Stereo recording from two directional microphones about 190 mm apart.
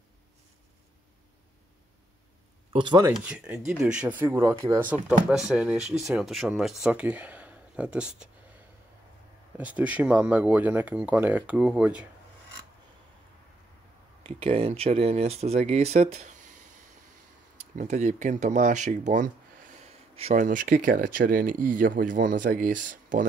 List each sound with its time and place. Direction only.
2.7 s speech: 25° right (ahead or behind)
3.1 s speech: 5° right (ahead or behind)
9.6 s speech: 5° right (ahead or behind)
14.2 s speech: 30° right (ahead or behind)
17.7 s speech: 40° right (ahead or behind)
20.4 s speech: 45° right (ahead or behind)